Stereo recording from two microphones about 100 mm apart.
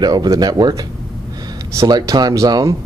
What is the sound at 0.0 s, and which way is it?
Speech, 40° right (ahead or behind).